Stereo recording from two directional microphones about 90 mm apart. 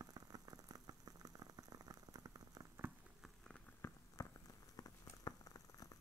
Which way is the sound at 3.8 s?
25° left (ahead or behind).